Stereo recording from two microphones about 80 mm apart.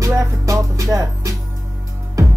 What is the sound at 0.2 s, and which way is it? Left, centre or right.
Music, right.